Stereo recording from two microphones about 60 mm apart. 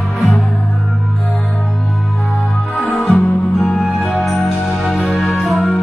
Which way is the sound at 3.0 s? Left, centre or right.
Centre.